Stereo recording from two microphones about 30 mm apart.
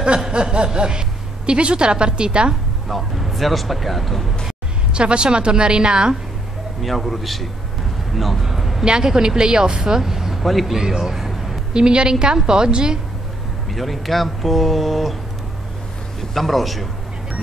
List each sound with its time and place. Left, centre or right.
0.3 s snicker: right
0.7 s a woman's voice: right
2.9 s speech: centre
4.9 s a woman's voice: right
6.8 s speech: centre
8.5 s a sound: centre
8.8 s speech: right
10.4 s speech: centre
10.7 s speech: centre
11.7 s speech: right
13.7 s speech: centre
16.2 s a man's voice: centre